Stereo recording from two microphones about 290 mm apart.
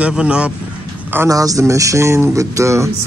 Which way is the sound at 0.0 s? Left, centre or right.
Centre.